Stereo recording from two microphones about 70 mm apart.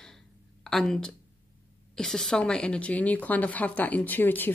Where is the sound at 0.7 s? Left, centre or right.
Centre.